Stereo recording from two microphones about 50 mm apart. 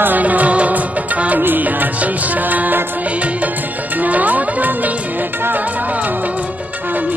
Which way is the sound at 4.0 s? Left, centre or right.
Right.